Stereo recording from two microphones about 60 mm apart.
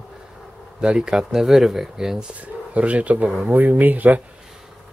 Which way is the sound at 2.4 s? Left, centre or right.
Right.